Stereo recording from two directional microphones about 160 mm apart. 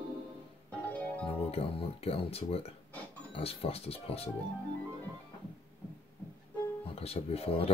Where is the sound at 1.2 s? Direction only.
40° left (ahead or behind).